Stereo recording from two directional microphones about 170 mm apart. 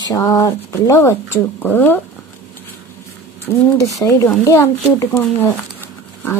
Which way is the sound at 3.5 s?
15° left (ahead or behind).